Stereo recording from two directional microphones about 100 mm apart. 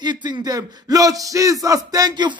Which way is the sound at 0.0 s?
45° right (ahead or behind).